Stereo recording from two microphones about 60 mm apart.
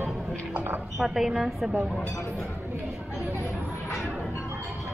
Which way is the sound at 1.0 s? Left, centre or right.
Centre.